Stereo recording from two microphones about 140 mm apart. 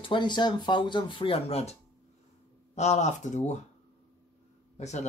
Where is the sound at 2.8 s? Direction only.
55° left (ahead or behind).